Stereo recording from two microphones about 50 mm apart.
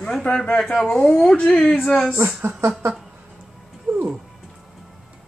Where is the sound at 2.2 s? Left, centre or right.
Right.